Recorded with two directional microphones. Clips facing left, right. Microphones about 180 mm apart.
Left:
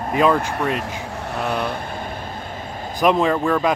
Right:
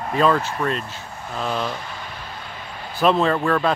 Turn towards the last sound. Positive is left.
turn(degrees=15)  # may be behind; listen again after turning